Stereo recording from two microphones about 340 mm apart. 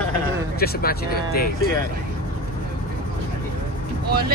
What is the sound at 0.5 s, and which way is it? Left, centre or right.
Speech, left.